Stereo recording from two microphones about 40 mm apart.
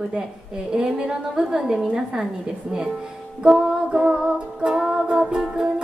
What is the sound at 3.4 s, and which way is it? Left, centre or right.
Speech, right.